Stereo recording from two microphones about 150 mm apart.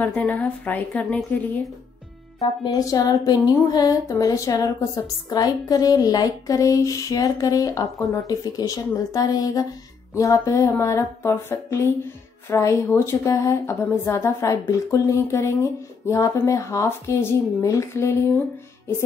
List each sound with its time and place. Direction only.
0.0 s a woman's voice: 10° left (ahead or behind)
2.6 s speech: 25° left (ahead or behind)